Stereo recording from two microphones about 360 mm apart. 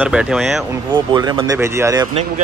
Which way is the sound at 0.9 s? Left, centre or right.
Centre.